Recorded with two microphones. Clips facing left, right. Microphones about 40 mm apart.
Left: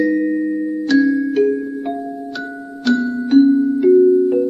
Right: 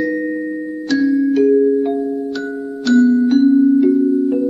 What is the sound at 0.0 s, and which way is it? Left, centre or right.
Music, centre.